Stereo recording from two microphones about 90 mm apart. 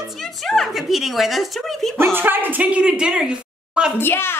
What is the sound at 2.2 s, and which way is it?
A woman's voice, 20° right (ahead or behind).